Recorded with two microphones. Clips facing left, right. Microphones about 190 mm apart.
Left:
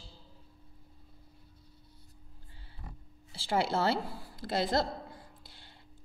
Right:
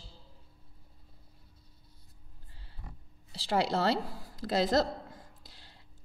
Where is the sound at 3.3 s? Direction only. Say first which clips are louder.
Right 1 dB; 35° right (ahead or behind).